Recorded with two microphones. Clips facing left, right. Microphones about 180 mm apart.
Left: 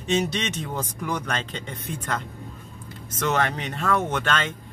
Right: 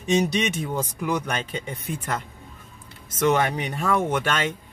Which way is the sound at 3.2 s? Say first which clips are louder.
Right 3 dB; 10° right (ahead or behind).